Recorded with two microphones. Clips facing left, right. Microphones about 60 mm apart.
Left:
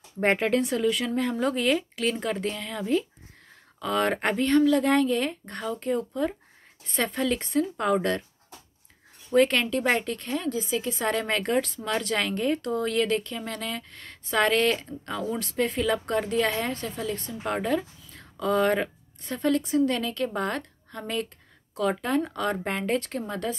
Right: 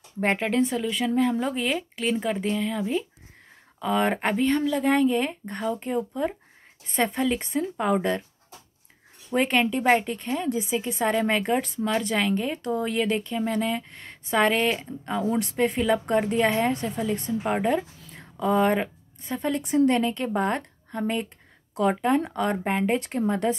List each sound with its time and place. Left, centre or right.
0.2 s speech: centre
9.3 s speech: centre
19.9 s speech: right